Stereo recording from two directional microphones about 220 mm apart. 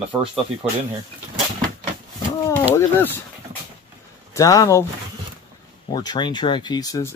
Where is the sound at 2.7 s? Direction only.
10° left (ahead or behind).